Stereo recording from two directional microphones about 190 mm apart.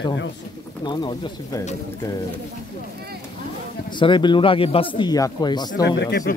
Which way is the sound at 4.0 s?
25° left (ahead or behind).